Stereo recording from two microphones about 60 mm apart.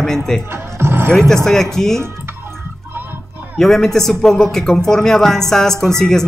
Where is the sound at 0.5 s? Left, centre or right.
Right.